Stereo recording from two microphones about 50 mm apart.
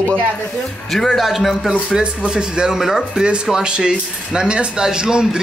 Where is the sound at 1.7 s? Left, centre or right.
Centre.